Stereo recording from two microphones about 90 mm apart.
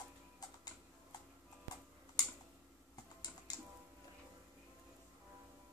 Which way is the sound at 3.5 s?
45° left (ahead or behind).